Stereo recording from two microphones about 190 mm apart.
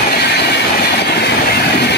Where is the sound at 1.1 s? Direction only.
60° left (ahead or behind).